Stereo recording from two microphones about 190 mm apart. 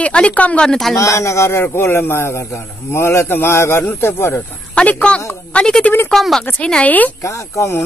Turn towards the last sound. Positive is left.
turn(degrees=15)  # may be behind; listen again after turning